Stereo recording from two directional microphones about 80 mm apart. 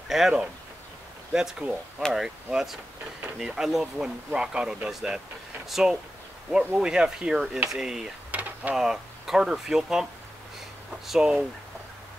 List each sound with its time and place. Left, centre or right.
0.1 s speech: centre
1.6 s speech: centre
2.1 s speech: centre
8.3 s a sound: centre
8.7 s speech: centre
11.1 s speech: centre